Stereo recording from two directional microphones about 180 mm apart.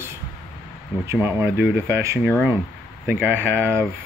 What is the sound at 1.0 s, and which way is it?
Speech, 15° right (ahead or behind).